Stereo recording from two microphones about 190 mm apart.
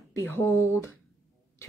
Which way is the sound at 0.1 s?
15° left (ahead or behind).